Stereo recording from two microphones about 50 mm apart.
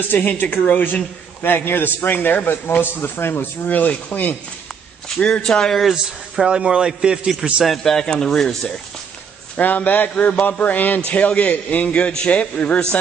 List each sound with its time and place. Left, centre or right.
0.0 s a man's voice: left
3.6 s speech: left
5.4 s speech: centre
6.4 s a man's voice: centre
7.6 s speech: centre
9.6 s speech: left
11.9 s a man's voice: centre